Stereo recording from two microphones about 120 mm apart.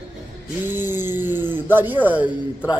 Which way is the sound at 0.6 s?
15° right (ahead or behind).